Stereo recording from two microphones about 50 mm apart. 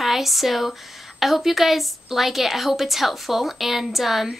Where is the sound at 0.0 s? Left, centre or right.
Centre.